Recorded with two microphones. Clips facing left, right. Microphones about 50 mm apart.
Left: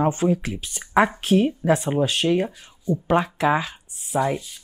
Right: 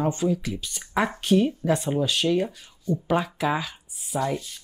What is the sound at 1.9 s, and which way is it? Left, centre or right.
Speech, left.